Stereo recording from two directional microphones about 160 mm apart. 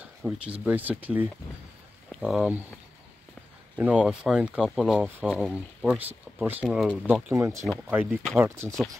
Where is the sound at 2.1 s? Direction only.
Centre (ahead or behind).